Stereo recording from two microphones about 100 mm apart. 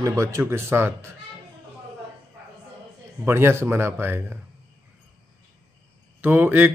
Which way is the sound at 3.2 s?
25° right (ahead or behind).